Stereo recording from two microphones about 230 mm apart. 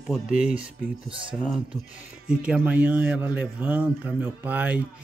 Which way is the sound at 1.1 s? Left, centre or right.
Right.